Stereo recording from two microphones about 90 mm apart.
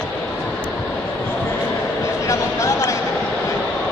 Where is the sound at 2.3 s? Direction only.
35° left (ahead or behind).